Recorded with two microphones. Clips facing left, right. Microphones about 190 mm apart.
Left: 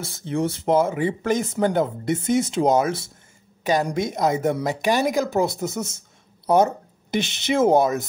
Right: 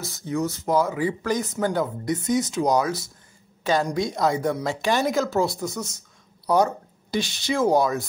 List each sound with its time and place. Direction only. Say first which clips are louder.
0.0 s speech: left 2 dB; 30° left (ahead or behind)